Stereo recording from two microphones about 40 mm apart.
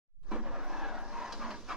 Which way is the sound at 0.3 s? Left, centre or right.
Right.